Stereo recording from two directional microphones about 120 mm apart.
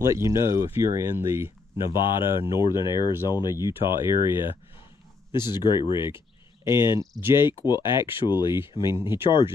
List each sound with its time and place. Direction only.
0.0 s speech: 25° right (ahead or behind)
1.9 s speech: 45° left (ahead or behind)
8.9 s speech: 20° right (ahead or behind)
9.2 s speech: 45° left (ahead or behind)